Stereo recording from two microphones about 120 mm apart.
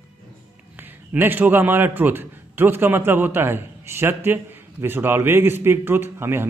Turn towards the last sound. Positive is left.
turn(degrees=-20)  # may be behind; listen again after turning